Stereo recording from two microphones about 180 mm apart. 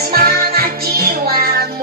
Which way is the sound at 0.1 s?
55° right (ahead or behind).